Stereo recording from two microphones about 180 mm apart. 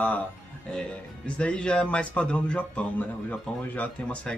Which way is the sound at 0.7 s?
5° left (ahead or behind).